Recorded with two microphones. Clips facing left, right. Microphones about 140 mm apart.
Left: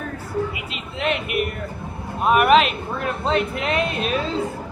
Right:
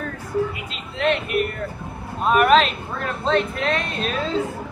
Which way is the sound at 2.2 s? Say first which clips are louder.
Even; 10° left (ahead or behind).